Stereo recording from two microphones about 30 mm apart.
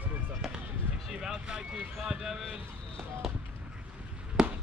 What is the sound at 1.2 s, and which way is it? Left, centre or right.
Vehicle, right.